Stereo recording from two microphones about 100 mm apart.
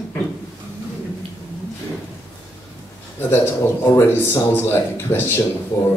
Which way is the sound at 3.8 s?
25° left (ahead or behind).